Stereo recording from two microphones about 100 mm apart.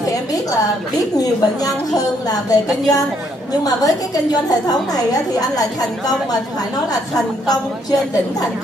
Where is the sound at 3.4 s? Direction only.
40° left (ahead or behind).